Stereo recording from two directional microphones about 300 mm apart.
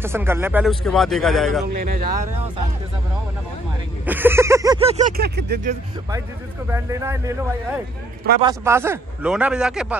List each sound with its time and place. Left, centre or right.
0.0 s speech: centre
4.0 s speech: centre; by 5.8 s right
6.7 s speech: centre